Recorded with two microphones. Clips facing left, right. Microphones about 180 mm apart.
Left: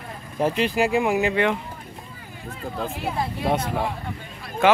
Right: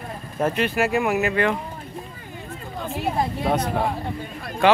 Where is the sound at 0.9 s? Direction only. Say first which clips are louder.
Left 1 dB; 15° left (ahead or behind).